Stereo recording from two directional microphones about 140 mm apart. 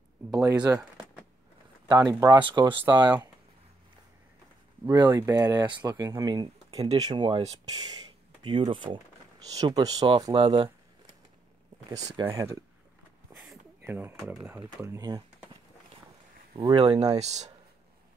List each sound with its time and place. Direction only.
1.9 s speech: 25° right (ahead or behind)
5.0 s speech: 20° right (ahead or behind); by 10.7 s 40° right (ahead or behind)
11.9 s speech: 25° right (ahead or behind)
13.4 s a sound: 10° right (ahead or behind)
14.3 s speech: 5° right (ahead or behind)
14.6 s speech: 20° right (ahead or behind)
16.6 s speech: 30° right (ahead or behind)
17.2 s speech: 55° right (ahead or behind)